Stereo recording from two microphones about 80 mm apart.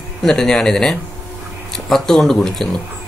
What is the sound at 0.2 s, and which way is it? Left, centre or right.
Speech, centre.